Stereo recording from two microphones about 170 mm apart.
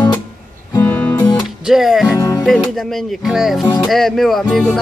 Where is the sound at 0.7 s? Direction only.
10° left (ahead or behind).